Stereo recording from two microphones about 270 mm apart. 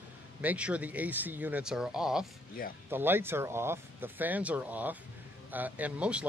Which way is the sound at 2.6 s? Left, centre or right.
Left.